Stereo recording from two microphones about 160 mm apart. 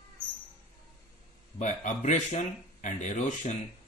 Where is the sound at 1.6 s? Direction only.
50° left (ahead or behind).